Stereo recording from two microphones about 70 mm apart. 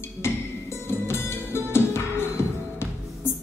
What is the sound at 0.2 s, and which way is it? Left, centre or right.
Music, left.